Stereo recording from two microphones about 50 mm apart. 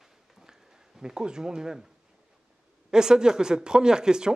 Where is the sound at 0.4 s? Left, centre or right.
Centre.